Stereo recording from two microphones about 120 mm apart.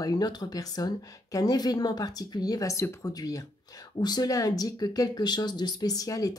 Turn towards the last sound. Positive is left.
turn(degrees=30)  # may be behind; listen again after turning